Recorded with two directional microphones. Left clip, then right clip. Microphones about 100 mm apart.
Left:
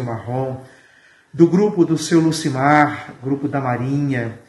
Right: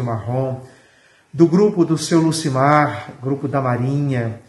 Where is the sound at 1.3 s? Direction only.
10° right (ahead or behind).